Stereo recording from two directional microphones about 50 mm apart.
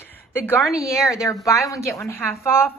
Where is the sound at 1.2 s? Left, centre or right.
Left.